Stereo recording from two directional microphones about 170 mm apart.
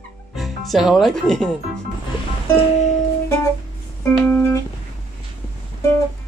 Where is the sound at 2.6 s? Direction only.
40° left (ahead or behind).